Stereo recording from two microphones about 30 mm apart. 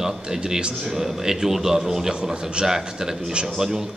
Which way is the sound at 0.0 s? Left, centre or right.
Centre.